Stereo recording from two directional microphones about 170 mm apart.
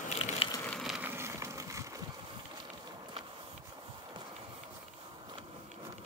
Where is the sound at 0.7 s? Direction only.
Centre (ahead or behind); by 2.0 s 20° right (ahead or behind).